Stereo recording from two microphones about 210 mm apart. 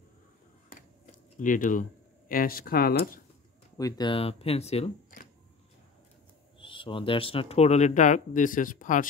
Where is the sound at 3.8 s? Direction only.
20° left (ahead or behind); by 5.3 s 35° left (ahead or behind).